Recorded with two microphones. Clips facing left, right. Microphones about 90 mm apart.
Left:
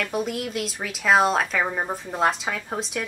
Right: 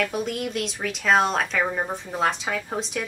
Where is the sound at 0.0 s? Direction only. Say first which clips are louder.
Right 1 dB; centre (ahead or behind).